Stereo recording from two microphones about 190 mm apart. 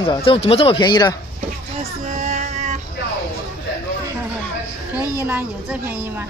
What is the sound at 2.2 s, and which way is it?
Child singing, 40° right (ahead or behind).